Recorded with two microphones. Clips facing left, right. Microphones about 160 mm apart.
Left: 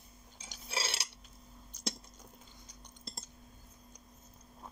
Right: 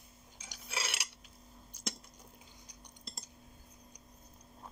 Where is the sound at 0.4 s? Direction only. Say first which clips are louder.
Left 2 dB; 30° left (ahead or behind).